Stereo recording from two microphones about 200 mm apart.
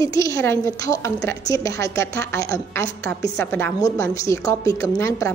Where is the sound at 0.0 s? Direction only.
15° left (ahead or behind).